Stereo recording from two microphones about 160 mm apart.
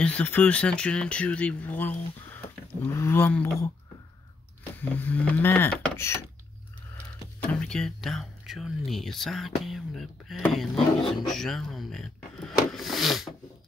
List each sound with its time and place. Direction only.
0.0 s speech: 10° left (ahead or behind)
4.7 s speech: 10° left (ahead or behind)
7.4 s speech: 5° left (ahead or behind)